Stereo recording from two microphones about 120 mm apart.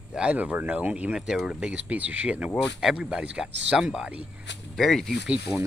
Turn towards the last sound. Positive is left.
turn(degrees=-10)  # may be behind; listen again after turning